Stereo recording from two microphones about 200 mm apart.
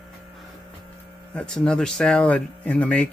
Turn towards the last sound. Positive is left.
turn(degrees=5)  # may be behind; listen again after turning